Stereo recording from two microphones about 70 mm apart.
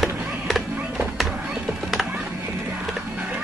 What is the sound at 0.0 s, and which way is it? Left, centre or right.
Music, centre.